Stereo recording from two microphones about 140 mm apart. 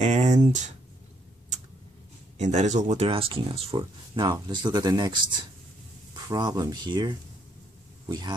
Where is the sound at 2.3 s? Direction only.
55° right (ahead or behind).